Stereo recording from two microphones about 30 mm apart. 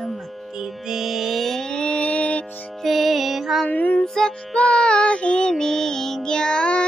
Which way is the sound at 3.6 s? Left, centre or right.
Left.